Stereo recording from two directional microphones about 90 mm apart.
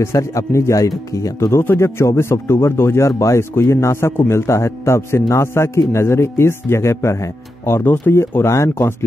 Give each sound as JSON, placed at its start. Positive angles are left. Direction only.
{"t": 0.0, "sound": "speech", "side_deg": 30}